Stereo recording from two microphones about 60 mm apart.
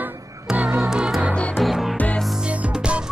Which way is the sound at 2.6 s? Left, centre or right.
Centre.